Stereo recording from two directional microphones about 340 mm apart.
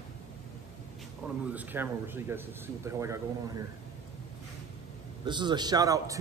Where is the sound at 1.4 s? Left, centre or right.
Centre.